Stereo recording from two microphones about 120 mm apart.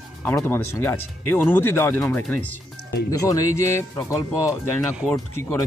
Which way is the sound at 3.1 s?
30° left (ahead or behind).